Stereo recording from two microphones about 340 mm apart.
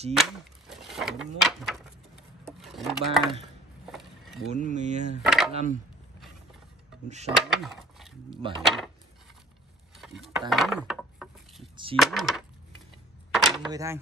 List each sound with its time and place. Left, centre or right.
0.1 s speech: centre
2.6 s dishes: centre
3.8 s a sound: centre
4.5 s speech: right
5.2 s speech: centre
5.5 s speech: centre
7.1 s speech: centre
7.3 s speech: centre
9.9 s a sound: centre
11.7 s a sound: centre
12.0 s speech: centre
13.3 s a sound: centre
13.7 s speech: centre